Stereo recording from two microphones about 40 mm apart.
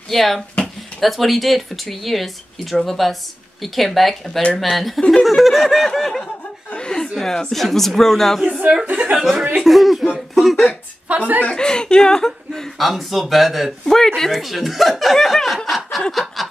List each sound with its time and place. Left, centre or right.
0.1 s speech: centre
6.7 s chuckle: left
7.0 s speech: centre
8.5 s speech: right
9.6 s speech: centre
11.1 s speech: right
11.5 s speech: left
12.7 s speech: centre
13.8 s speech: centre
14.4 s speech: centre
15.1 s speech: centre
16.1 s snicker: centre